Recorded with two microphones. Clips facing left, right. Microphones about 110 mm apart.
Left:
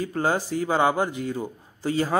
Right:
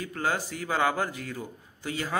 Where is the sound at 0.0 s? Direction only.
30° left (ahead or behind).